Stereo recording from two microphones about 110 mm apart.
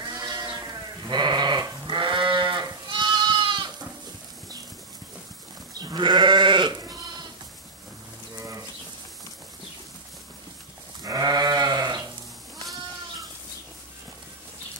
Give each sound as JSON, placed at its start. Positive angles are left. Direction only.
{"t": 0.0, "sound": "sheep", "side_deg": -40}
{"t": 2.9, "sound": "goat", "side_deg": -45}
{"t": 5.8, "sound": "goat", "side_deg": -40}
{"t": 8.4, "sound": "pigeon", "side_deg": -30}
{"t": 11.0, "sound": "goat", "side_deg": -35}